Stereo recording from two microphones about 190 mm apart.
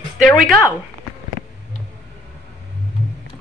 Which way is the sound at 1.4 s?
55° left (ahead or behind).